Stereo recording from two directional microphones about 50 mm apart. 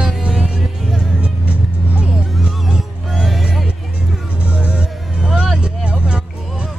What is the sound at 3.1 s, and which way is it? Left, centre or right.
Music, centre.